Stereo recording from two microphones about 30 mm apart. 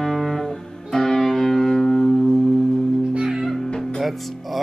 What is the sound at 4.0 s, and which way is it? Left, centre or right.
Music, centre.